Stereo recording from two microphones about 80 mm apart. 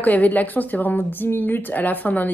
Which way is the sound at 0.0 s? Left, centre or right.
Left.